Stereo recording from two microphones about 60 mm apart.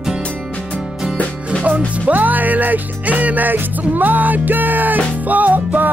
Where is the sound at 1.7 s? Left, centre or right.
Right.